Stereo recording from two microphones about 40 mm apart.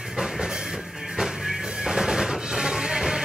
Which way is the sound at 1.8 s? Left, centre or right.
Centre.